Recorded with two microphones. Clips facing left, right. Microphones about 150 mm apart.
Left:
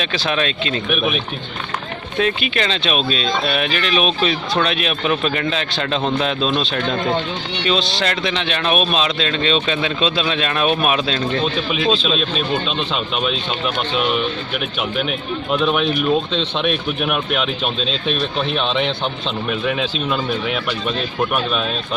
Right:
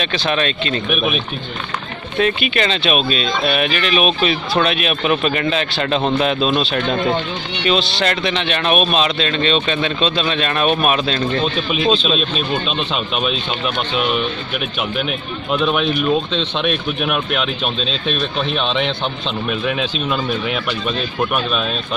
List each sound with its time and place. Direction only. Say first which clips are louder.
0.0 s a man's voice: right 1 dB; centre (ahead or behind)
0.8 s speech: even; 15° right (ahead or behind)
2.1 s a man's voice: right 2 dB; centre (ahead or behind)
12.1 s speech: right 1 dB; 10° right (ahead or behind)
15.5 s a man's voice: right 1 dB; centre (ahead or behind)